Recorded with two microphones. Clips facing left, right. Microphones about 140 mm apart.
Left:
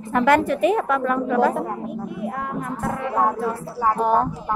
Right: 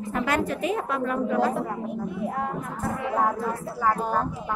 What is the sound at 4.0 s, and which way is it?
Speech, 65° left (ahead or behind).